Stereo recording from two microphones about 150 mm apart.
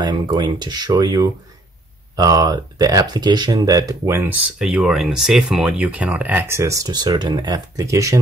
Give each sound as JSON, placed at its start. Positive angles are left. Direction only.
{"t": 0.0, "sound": "speech", "side_deg": -30}